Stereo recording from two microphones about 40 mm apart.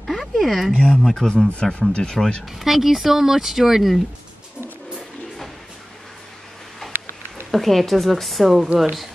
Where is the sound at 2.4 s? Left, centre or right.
Centre.